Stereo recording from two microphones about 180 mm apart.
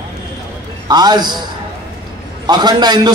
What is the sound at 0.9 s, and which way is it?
Speech, 25° right (ahead or behind).